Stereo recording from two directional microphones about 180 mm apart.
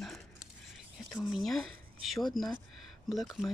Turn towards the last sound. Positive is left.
turn(degrees=0)  # may be behind; listen again after turning